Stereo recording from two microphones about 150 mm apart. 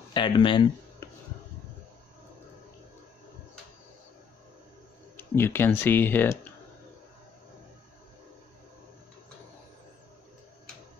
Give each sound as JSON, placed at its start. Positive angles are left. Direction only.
{"t": 0.1, "sound": "speech", "side_deg": 35}
{"t": 5.1, "sound": "speech", "side_deg": 15}